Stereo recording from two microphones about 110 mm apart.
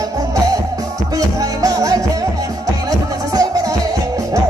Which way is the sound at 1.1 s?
30° right (ahead or behind).